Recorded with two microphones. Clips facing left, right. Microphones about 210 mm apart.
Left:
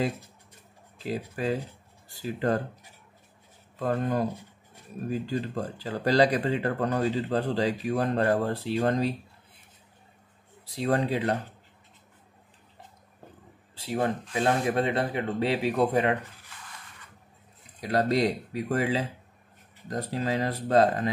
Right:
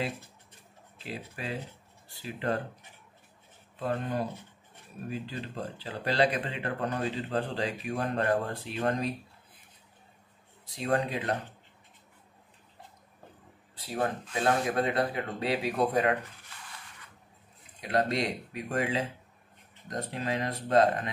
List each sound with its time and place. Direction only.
0.9 s speech: 40° left (ahead or behind)
3.8 s speech: 45° left (ahead or behind)
10.6 s speech: 35° left (ahead or behind)
13.7 s speech: 25° left (ahead or behind)
17.7 s speech: 35° left (ahead or behind)